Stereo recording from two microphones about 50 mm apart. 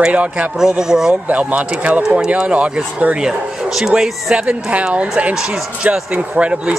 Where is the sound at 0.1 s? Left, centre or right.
Right.